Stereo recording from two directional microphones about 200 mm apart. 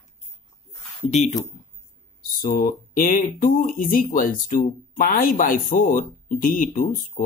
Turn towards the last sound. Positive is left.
turn(degrees=45)  # may be behind; listen again after turning